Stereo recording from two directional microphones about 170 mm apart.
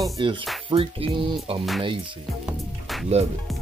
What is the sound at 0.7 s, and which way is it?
Music, 30° right (ahead or behind).